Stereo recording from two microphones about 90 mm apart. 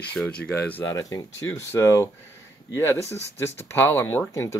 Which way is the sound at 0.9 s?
35° left (ahead or behind).